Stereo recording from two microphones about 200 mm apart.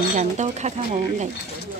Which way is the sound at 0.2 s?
35° right (ahead or behind).